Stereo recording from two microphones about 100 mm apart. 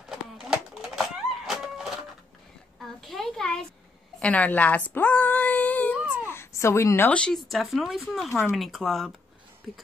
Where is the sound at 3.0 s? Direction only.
Centre (ahead or behind).